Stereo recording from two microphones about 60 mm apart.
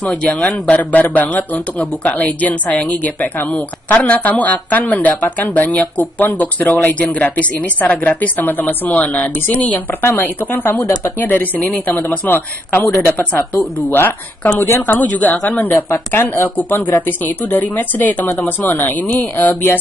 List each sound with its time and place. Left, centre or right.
0.2 s a woman's voice: centre
12.8 s speech: left
13.3 s a woman's voice: left
13.6 s a woman's voice: left
15.7 s a woman's voice: left